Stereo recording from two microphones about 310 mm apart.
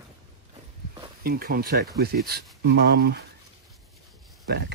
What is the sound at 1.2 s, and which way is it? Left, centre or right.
Speech, right.